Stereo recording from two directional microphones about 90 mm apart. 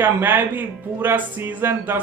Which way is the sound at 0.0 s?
20° right (ahead or behind).